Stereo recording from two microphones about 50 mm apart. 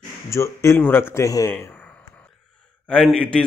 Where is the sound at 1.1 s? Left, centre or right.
Left.